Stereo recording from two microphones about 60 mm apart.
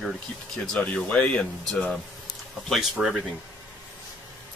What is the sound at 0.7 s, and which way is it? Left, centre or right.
Speech, left.